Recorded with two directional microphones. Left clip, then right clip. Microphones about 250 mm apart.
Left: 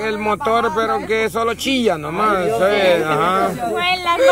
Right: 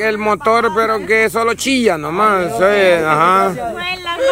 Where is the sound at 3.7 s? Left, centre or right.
Left.